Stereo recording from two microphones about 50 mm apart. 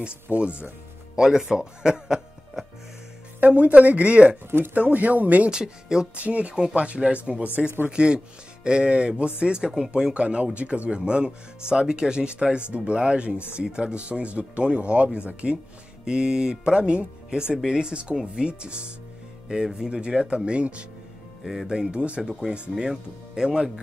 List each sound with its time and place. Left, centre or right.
0.4 s speech: right
1.1 s speech: centre
3.3 s speech: right
4.5 s speech: right
4.7 s speech: right
5.5 s speech: centre
6.1 s speech: right
7.6 s speech: centre
7.9 s speech: centre
10.1 s speech: right
16.1 s speech: centre
22.2 s speech: centre